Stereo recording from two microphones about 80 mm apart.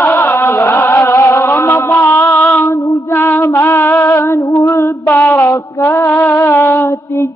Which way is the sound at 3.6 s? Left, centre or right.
Left.